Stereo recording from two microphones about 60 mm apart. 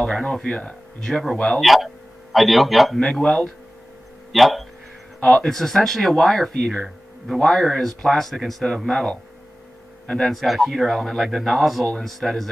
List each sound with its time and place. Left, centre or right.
0.0 s a man's voice: centre
10.4 s speech: centre